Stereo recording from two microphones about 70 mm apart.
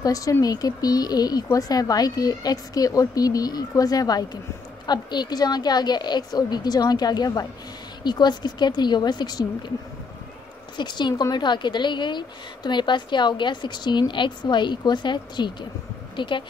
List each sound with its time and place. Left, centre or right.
0.0 s speech: left
4.8 s speech: left
8.0 s a woman's voice: left
10.8 s a woman's voice: left